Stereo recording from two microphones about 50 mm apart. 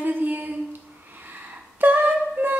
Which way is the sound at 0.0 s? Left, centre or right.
Right.